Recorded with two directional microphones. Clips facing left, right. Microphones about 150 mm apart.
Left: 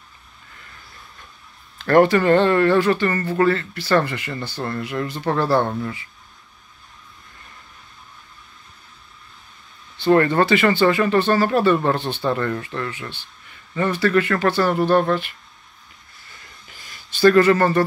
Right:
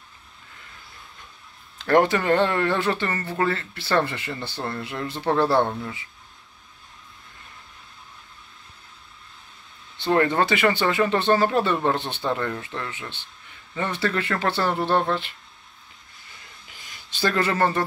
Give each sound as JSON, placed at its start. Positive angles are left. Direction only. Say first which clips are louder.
{"t": 1.8, "sound": "speech", "louder": "left 5 dB", "side_deg": -20}
{"t": 5.7, "sound": "speech", "louder": "left 4 dB", "side_deg": -5}
{"t": 9.9, "sound": "speech", "louder": "left 5 dB", "side_deg": -20}
{"t": 16.8, "sound": "speech", "louder": "left 11 dB", "side_deg": -15}